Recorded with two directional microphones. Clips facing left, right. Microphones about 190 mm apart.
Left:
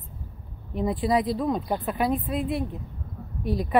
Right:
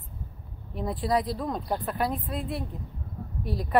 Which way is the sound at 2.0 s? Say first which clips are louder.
Left 4 dB; 20° left (ahead or behind).